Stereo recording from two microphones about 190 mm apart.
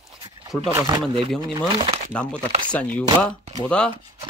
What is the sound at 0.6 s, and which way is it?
Speech, 20° right (ahead or behind).